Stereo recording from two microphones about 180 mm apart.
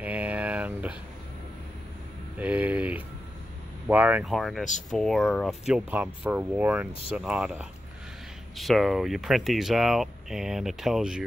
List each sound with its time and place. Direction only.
0.0 s a sound: 10° right (ahead or behind)
2.3 s speech: 10° right (ahead or behind)
6.9 s speech: 30° left (ahead or behind)
7.2 s speech: 5° right (ahead or behind)